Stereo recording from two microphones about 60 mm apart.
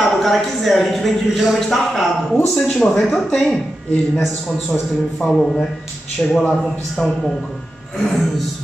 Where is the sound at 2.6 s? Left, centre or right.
Centre.